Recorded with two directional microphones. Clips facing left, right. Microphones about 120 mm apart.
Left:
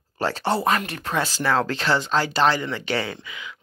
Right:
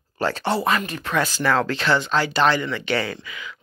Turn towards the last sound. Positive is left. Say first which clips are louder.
# right 2 dB
turn(degrees=20)  # may be behind; listen again after turning